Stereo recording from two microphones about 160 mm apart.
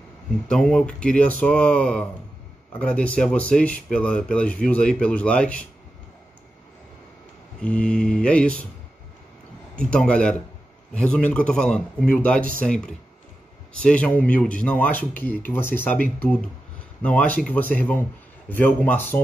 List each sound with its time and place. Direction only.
0.5 s speech: 5° left (ahead or behind)
7.6 s speech: 10° left (ahead or behind)
9.8 s speech: 5° left (ahead or behind)
12.4 s speech: 60° right (ahead or behind)
12.6 s speech: 5° left (ahead or behind)